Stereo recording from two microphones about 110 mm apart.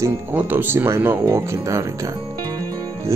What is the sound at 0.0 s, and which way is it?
Speech, 20° right (ahead or behind).